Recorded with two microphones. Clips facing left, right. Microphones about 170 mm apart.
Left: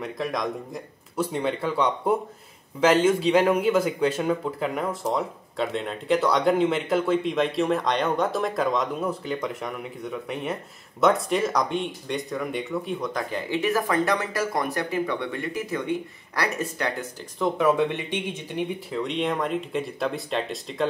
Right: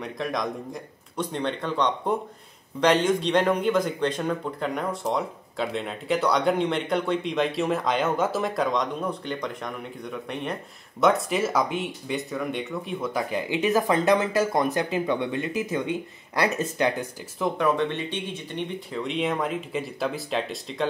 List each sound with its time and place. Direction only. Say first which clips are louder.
0.0 s speech: left 1 dB; centre (ahead or behind); by 17.1 s 20° right (ahead or behind)
17.4 s speech: left 2 dB; 5° left (ahead or behind)